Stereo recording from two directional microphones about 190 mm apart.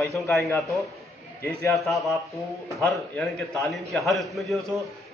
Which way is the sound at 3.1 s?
Centre (ahead or behind).